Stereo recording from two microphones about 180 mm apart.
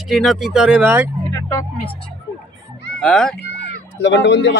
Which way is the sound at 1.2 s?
20° left (ahead or behind).